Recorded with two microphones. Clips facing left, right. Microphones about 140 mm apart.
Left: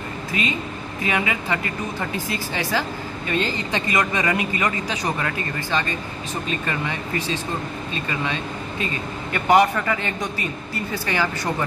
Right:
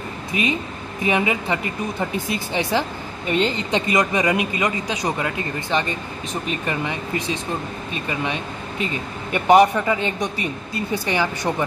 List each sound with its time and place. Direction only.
0.3 s speech: 20° right (ahead or behind)